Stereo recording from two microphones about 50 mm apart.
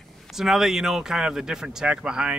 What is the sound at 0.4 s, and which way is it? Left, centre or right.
Speech, centre.